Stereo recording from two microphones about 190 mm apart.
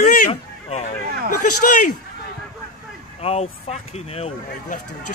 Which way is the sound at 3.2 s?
35° left (ahead or behind).